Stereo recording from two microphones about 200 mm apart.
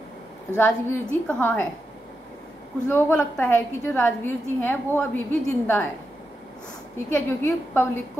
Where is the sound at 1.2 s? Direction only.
10° left (ahead or behind).